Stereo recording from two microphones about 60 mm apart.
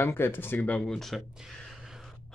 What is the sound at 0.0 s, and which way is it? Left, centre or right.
Speech, left.